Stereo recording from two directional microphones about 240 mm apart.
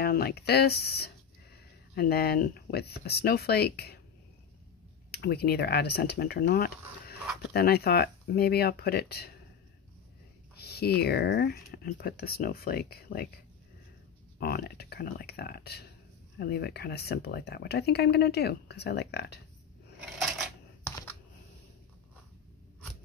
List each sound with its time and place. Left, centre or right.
0.0 s speech: left
5.1 s speech: left
10.5 s speech: left
14.4 s speech: left
20.8 s computer keyboard: centre